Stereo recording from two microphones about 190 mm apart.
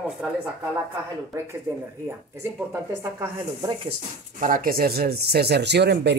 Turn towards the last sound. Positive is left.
turn(degrees=-60)  # may be behind; listen again after turning